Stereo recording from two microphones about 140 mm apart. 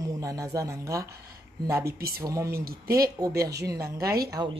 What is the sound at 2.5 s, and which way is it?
Speech, 90° right.